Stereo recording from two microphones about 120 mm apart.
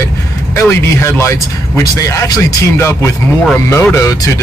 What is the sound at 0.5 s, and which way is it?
Speech, 25° left (ahead or behind).